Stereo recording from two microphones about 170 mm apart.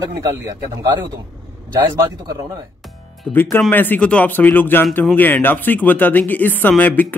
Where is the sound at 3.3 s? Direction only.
10° left (ahead or behind).